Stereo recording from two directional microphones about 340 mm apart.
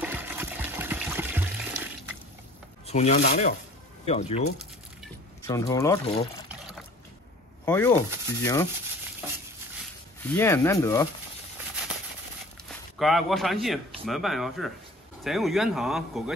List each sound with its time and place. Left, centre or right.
0.0 s water: centre
2.9 s rub: centre
5.5 s speech: centre
7.6 s speech: centre
10.2 s speech: centre
12.6 s a man's voice: centre